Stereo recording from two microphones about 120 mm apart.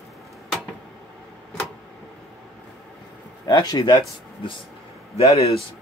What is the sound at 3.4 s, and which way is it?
Speech, 35° left (ahead or behind).